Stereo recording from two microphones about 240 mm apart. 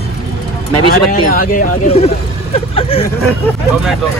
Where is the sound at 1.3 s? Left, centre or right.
Left.